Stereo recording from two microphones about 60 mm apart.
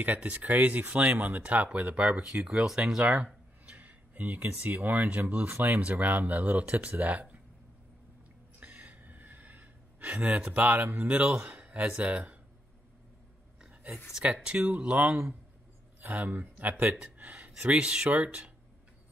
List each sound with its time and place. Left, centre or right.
0.0 s speech: right
8.5 s gasp: right
10.2 s speech: right
14.2 s speech: right